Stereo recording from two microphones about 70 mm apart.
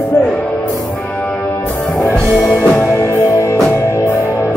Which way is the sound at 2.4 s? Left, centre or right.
Centre.